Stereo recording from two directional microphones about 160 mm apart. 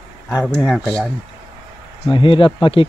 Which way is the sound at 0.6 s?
5° left (ahead or behind).